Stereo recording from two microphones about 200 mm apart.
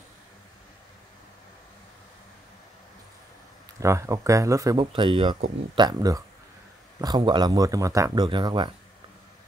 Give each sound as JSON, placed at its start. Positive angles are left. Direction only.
{"t": 3.8, "sound": "speech", "side_deg": -15}